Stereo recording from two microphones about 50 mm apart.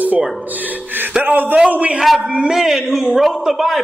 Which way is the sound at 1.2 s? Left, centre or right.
Right.